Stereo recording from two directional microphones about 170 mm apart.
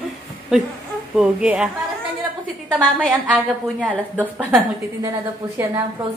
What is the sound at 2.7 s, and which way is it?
Speech, 5° left (ahead or behind).